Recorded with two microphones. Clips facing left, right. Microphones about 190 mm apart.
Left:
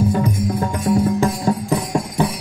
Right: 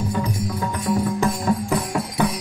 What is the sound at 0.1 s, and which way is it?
Music, 35° left (ahead or behind).